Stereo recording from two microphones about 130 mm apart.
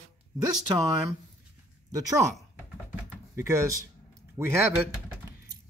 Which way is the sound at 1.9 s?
25° right (ahead or behind).